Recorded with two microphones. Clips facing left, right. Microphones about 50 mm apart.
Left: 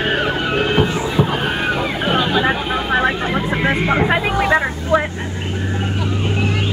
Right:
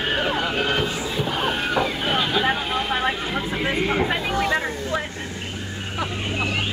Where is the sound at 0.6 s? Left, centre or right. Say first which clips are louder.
Left 6 dB; left.